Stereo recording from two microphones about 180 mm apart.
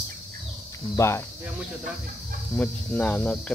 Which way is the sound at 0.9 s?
15° left (ahead or behind).